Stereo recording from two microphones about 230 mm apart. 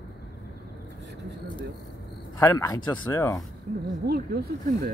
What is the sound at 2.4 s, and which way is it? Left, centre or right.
Speech, centre.